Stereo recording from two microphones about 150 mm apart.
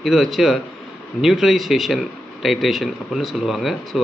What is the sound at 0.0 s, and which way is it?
A man's voice, centre (ahead or behind).